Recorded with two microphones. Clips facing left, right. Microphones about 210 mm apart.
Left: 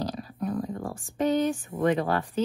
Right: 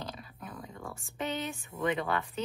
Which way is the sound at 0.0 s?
40° left (ahead or behind).